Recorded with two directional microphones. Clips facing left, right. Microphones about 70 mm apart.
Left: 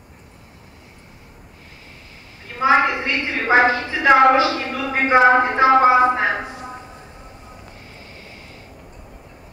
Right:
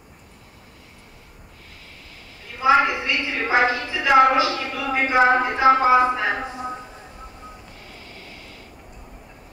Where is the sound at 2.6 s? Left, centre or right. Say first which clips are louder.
Left 1 dB; left.